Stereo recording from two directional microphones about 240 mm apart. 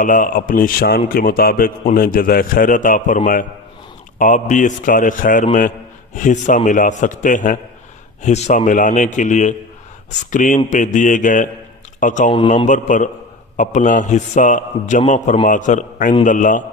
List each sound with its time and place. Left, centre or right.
0.0 s a man's voice: left